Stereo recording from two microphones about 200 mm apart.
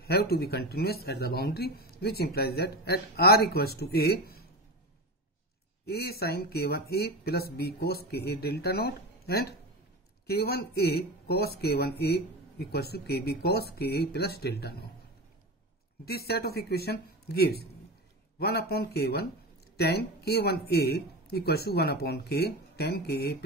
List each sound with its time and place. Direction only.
0.0 s speech: 50° left (ahead or behind)
5.9 s speech: 50° left (ahead or behind)
16.1 s speech: 50° left (ahead or behind)